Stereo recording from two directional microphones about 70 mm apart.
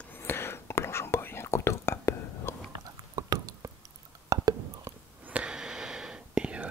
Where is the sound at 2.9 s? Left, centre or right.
Right.